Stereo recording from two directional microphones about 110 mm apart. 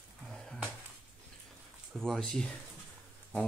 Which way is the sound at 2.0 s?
5° left (ahead or behind).